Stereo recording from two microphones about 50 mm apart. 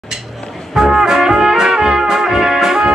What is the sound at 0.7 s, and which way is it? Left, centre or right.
Trumpet, centre.